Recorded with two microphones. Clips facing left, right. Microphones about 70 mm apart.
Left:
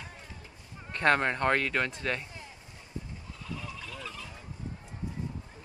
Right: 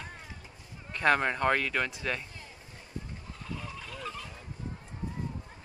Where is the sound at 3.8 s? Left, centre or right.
Right.